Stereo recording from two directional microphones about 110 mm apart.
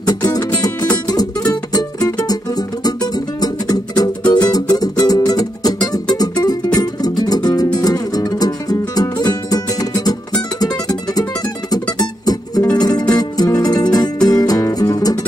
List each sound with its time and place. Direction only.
0.0 s music: 35° left (ahead or behind)
12.7 s music: 35° left (ahead or behind)